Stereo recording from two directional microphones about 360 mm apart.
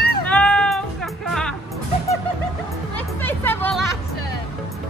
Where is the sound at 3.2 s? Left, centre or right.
Centre.